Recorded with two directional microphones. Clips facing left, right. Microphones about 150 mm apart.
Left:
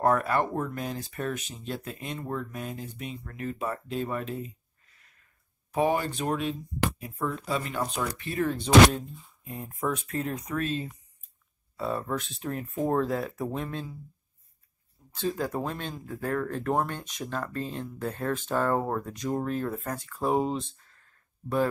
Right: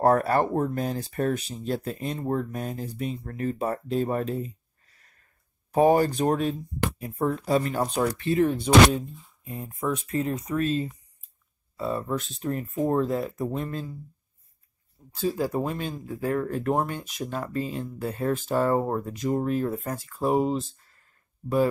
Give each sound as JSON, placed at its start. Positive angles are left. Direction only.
{"t": 0.0, "sound": "speech", "side_deg": -35}
{"t": 8.3, "sound": "speech", "side_deg": -20}
{"t": 8.5, "sound": "speech", "side_deg": 0}
{"t": 15.1, "sound": "speech", "side_deg": -5}